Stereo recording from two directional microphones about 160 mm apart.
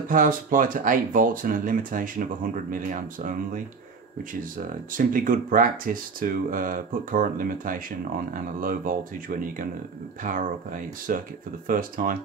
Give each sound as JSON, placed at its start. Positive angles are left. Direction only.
{"t": 0.1, "sound": "speech", "side_deg": -60}
{"t": 4.9, "sound": "speech", "side_deg": -60}